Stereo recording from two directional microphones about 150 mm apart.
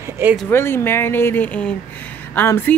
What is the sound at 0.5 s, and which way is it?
Speech, 15° left (ahead or behind).